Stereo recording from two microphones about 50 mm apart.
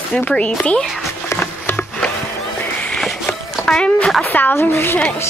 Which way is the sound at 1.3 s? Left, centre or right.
Left.